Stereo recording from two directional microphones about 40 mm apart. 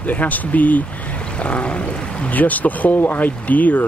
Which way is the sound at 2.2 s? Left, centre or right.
Left.